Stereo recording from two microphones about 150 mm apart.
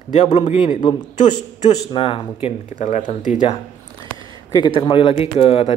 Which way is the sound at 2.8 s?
55° left (ahead or behind).